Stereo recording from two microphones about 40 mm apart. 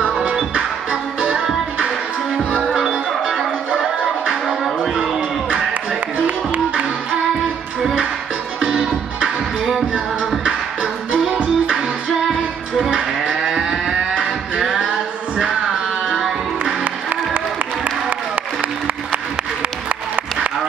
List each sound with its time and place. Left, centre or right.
0.0 s music: right
2.6 s music: right
6.2 s music: right
8.5 s music: right
10.4 s music: right
12.9 s moo: right
16.1 s a sound: centre